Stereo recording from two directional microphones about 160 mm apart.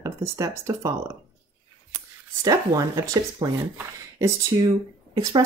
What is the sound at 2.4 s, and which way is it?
Speech, 20° right (ahead or behind).